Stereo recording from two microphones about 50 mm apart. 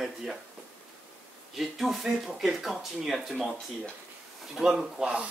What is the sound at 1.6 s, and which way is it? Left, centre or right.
Speech, centre.